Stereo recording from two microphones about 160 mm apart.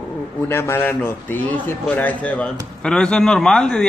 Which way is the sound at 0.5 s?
15° left (ahead or behind).